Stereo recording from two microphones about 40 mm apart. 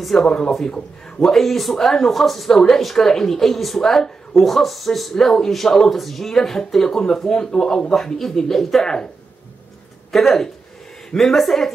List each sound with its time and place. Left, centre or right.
0.0 s speech: centre
5.1 s speech: centre
8.8 s speech: centre
10.1 s speech: centre